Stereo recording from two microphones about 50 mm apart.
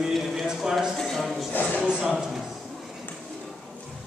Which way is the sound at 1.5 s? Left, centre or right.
Left.